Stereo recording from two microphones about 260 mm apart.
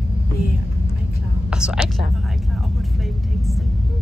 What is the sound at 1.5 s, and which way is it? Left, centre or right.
Vehicle, centre.